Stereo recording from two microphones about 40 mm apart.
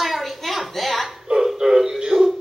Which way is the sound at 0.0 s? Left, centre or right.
Centre.